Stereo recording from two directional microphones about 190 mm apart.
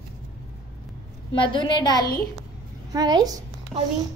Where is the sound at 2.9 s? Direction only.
20° right (ahead or behind).